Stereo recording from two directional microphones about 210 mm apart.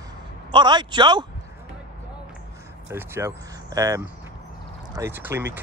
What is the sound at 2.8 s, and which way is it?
Speech, 10° right (ahead or behind).